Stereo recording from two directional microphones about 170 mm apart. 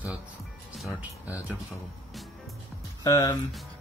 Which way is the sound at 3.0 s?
20° left (ahead or behind).